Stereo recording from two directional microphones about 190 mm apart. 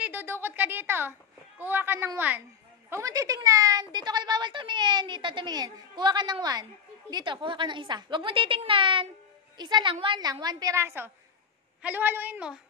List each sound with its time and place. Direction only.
0.0 s speech: 10° right (ahead or behind)